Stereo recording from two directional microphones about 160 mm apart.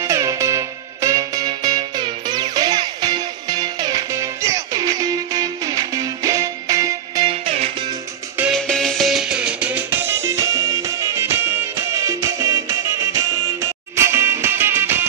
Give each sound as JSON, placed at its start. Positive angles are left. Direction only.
{"t": 0.0, "sound": "music", "side_deg": -20}
{"t": 7.2, "sound": "music", "side_deg": -40}
{"t": 8.5, "sound": "music", "side_deg": 5}